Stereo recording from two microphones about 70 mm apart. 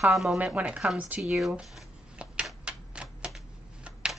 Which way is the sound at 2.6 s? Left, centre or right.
Centre.